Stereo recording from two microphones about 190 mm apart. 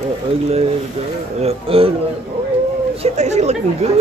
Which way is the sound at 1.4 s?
30° right (ahead or behind).